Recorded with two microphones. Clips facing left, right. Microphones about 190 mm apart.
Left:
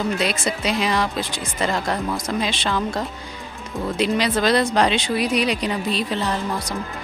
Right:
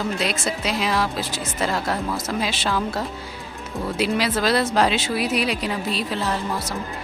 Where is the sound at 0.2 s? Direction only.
Centre (ahead or behind).